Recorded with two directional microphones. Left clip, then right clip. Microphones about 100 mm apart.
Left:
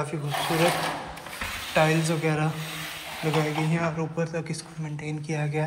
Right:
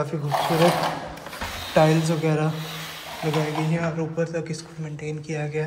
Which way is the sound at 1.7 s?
40° right (ahead or behind).